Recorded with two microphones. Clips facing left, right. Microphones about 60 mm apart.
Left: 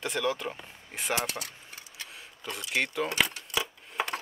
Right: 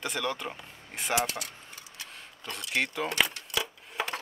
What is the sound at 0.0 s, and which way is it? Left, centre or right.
Speech, centre.